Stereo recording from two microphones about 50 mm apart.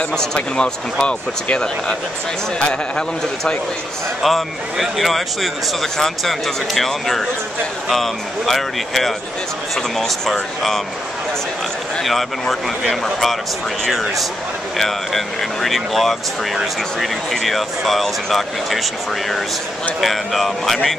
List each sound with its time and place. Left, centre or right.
0.1 s speech: centre
4.2 s speech: centre
12.0 s speech: centre